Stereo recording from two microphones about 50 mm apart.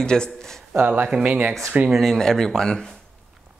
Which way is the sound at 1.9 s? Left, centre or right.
Centre.